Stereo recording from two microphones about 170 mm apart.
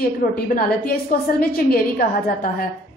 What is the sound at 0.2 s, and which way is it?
A woman's voice, 60° left (ahead or behind).